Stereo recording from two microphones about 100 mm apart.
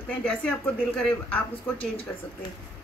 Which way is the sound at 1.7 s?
65° left (ahead or behind).